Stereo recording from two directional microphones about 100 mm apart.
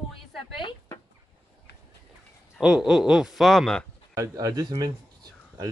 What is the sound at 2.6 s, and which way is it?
Speech, 5° right (ahead or behind).